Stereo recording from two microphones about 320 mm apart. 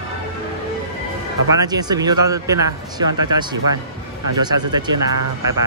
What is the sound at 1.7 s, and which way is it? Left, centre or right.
Speech, centre.